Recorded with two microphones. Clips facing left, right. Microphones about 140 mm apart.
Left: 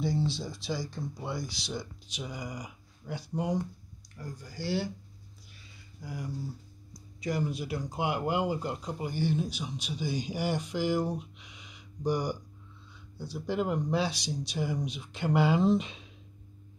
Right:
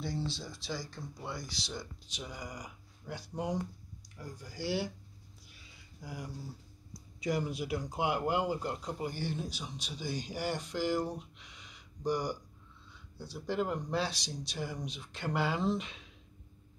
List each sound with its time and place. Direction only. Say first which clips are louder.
0.0 s speech: left 7 dB; 15° left (ahead or behind); by 4.8 s 10° right (ahead or behind)
6.0 s speech: left 5 dB; 5° right (ahead or behind)
13.5 s speech: left 4 dB; 10° left (ahead or behind)